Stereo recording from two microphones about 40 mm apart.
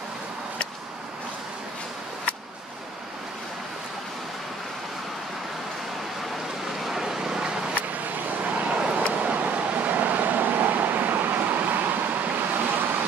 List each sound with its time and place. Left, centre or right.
6.9 s a sound: centre
7.7 s vehicle: right
8.7 s vehicle: right